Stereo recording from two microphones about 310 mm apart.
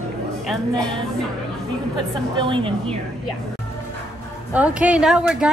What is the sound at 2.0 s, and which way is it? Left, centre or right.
Speech, centre.